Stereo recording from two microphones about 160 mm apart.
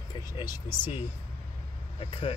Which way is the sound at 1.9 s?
35° left (ahead or behind).